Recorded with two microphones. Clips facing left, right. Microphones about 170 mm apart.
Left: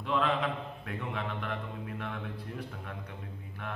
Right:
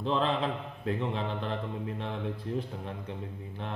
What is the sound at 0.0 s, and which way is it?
A man's voice, 30° right (ahead or behind).